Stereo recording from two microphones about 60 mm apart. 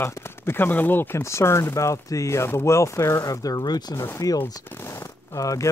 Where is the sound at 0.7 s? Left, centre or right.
Left.